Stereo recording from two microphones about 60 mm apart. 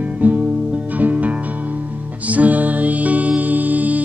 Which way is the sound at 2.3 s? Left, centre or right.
Right.